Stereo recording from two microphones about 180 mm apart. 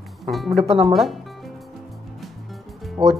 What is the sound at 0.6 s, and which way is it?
Speech, 30° right (ahead or behind).